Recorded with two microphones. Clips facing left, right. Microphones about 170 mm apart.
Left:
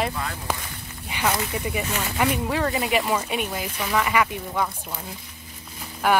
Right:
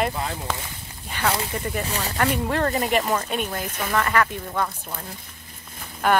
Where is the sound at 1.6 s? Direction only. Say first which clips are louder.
Even; 10° left (ahead or behind).